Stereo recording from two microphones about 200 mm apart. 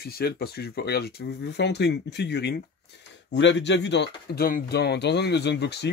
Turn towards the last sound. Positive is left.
turn(degrees=55)  # may be behind; listen again after turning